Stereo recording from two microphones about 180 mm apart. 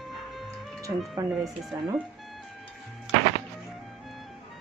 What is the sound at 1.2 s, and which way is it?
Speech, 20° right (ahead or behind).